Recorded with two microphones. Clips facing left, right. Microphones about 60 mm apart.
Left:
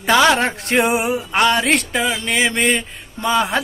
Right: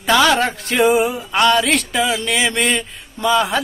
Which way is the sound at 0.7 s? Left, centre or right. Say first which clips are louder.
Right 3 dB; left.